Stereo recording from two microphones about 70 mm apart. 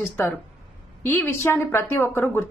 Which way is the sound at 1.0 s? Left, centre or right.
Left.